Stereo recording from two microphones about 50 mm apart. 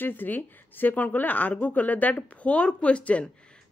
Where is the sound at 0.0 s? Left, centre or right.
Left.